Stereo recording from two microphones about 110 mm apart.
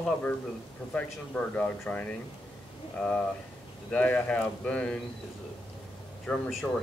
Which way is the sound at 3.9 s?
10° left (ahead or behind).